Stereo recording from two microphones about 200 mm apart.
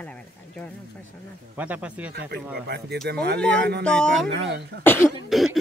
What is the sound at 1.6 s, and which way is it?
Speech, 10° right (ahead or behind).